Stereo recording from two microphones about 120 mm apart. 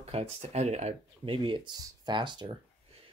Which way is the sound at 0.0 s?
60° right (ahead or behind).